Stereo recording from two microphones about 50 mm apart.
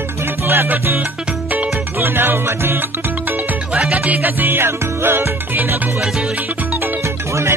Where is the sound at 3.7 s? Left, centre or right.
Right.